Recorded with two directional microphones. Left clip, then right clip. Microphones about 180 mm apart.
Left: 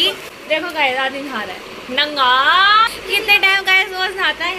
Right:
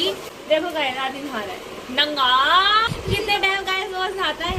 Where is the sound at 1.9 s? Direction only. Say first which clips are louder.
Left 4 dB; 35° left (ahead or behind).